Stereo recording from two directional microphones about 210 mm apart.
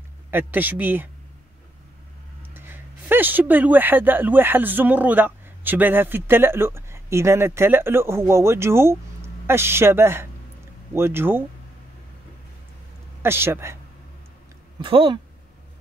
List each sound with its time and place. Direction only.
0.3 s a man's voice: 10° right (ahead or behind)
2.4 s a man's voice: 10° right (ahead or behind)
13.2 s a man's voice: 10° right (ahead or behind)
14.8 s speech: 25° right (ahead or behind)